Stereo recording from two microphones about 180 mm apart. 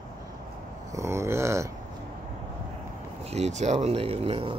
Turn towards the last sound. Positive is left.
turn(degrees=-35)  # may be behind; listen again after turning